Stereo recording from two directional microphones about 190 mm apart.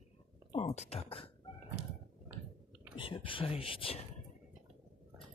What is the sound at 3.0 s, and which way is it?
Speech, 25° left (ahead or behind).